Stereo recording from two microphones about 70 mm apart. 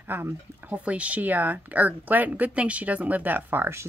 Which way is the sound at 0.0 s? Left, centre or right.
Right.